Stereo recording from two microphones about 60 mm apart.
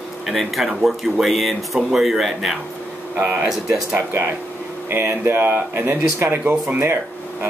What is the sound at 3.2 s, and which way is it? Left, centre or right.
Speech, right.